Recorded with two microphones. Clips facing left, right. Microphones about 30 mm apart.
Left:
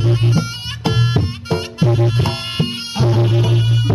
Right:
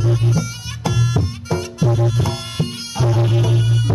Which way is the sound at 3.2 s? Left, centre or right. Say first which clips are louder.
Left 2 dB; centre.